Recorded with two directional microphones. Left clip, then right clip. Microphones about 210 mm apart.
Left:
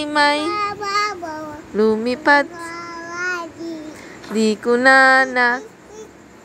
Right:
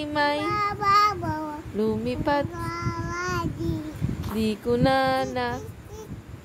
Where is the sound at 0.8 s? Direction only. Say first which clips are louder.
Right 1 dB; 20° right (ahead or behind).